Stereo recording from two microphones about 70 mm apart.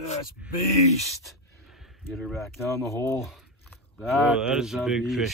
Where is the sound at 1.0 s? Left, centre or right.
Centre.